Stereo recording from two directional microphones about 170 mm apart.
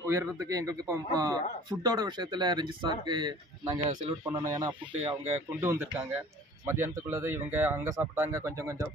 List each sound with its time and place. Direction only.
0.0 s a man's voice: 15° right (ahead or behind)